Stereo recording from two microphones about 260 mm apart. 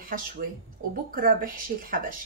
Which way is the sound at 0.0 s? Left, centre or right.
Right.